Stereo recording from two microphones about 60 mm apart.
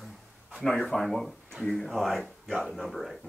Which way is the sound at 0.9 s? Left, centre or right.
Centre.